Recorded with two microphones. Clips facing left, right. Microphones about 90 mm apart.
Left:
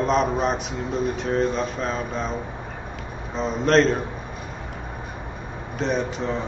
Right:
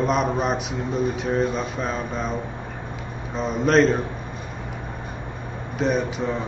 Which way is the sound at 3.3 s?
5° right (ahead or behind).